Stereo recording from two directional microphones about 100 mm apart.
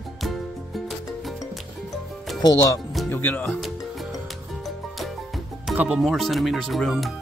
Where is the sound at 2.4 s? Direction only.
40° left (ahead or behind).